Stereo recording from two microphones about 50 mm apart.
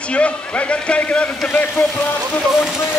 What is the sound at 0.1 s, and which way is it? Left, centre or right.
A man's voice, left.